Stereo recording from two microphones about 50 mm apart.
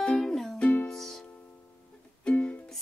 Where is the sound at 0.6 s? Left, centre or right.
Left.